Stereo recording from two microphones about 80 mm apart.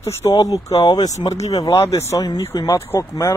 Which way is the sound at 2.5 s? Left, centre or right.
Left.